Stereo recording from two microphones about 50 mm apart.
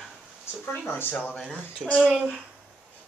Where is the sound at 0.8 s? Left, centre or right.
Left.